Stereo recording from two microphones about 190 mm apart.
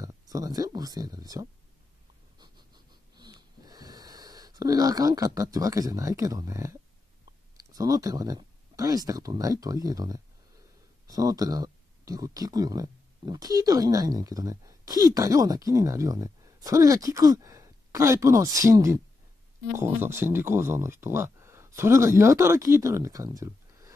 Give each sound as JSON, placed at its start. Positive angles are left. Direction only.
{"t": 0.0, "sound": "speech", "side_deg": -20}
{"t": 2.3, "sound": "wheeze", "side_deg": -20}
{"t": 7.5, "sound": "speech", "side_deg": -20}